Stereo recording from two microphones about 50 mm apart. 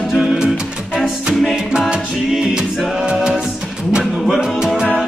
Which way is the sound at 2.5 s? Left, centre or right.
Centre.